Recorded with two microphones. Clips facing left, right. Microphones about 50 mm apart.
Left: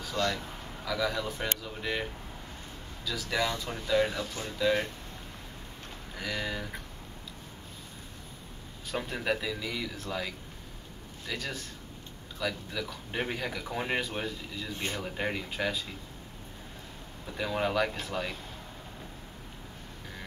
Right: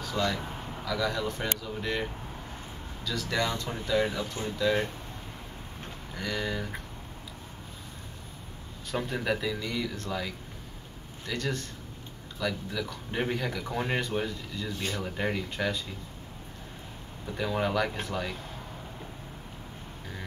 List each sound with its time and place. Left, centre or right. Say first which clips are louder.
0.2 s speech: right 1 dB; centre
6.1 s speech: right 2 dB; centre
8.9 s speech: right 2 dB; centre
14.7 s speech: right 1 dB; left
15.0 s speech: right 3 dB; centre
17.3 s speech: right 1 dB; centre